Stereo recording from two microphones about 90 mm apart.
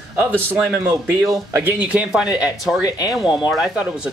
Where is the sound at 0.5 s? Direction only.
25° right (ahead or behind); by 2.8 s 5° right (ahead or behind).